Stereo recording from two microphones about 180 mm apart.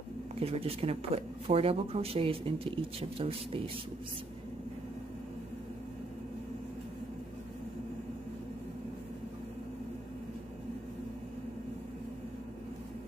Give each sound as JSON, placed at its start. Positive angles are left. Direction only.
{"t": 0.4, "sound": "speech", "side_deg": -35}